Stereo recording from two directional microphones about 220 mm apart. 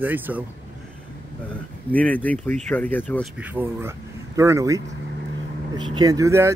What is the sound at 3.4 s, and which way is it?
Speech, 10° right (ahead or behind).